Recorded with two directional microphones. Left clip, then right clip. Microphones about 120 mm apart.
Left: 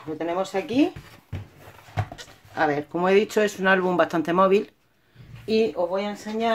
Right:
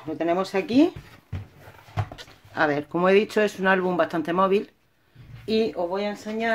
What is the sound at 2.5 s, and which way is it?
Speech, 25° right (ahead or behind).